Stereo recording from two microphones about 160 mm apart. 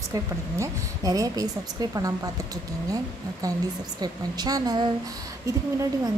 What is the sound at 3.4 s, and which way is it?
A woman's voice, 20° right (ahead or behind).